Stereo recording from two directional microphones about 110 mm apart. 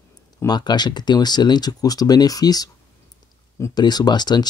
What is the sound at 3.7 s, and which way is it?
Speech, 40° left (ahead or behind).